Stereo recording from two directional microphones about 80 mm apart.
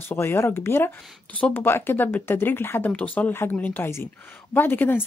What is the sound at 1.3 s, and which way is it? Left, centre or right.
Speech, centre.